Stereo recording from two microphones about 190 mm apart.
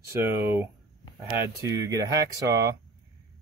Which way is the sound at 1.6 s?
20° right (ahead or behind).